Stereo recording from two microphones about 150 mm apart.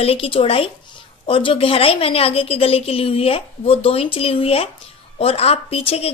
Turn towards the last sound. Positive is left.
turn(degrees=40)  # may be behind; listen again after turning